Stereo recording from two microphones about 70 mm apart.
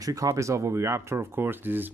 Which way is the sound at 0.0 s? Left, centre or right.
Right.